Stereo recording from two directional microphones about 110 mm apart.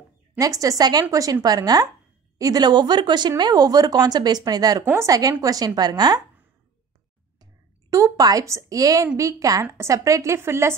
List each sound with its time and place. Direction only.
0.4 s a woman's voice: 30° right (ahead or behind)
7.9 s a woman's voice: 35° right (ahead or behind)